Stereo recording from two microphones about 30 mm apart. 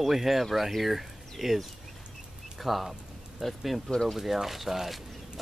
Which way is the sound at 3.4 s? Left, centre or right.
Centre.